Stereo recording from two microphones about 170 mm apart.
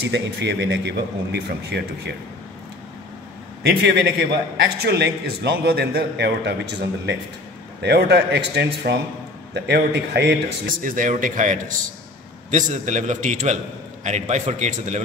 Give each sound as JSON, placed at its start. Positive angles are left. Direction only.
{"t": 0.0, "sound": "a man's voice", "side_deg": -75}
{"t": 3.6, "sound": "a man's voice", "side_deg": -80}
{"t": 7.8, "sound": "a man's voice", "side_deg": -75}
{"t": 10.8, "sound": "a man's voice", "side_deg": -55}